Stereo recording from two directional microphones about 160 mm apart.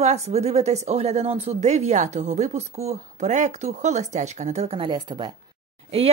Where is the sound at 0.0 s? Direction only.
45° right (ahead or behind); by 5.3 s 30° right (ahead or behind).